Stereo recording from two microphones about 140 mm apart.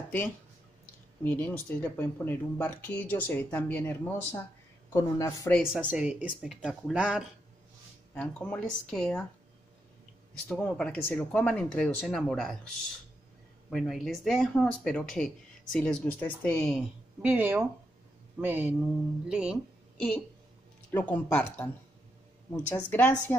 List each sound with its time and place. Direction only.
1.2 s speech: 15° left (ahead or behind)
4.9 s speech: 25° left (ahead or behind)
5.7 s speech: 10° right (ahead or behind)
8.1 s speech: 10° left (ahead or behind)
10.5 s speech: 5° left (ahead or behind)
13.7 s speech: centre (ahead or behind)
17.2 s speech: 15° right (ahead or behind)
20.9 s speech: 10° left (ahead or behind)
22.7 s speech: 15° left (ahead or behind)